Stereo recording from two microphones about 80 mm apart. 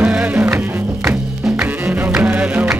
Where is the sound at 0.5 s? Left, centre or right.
Right.